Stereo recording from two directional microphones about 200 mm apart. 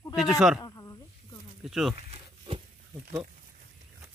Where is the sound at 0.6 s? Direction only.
15° left (ahead or behind).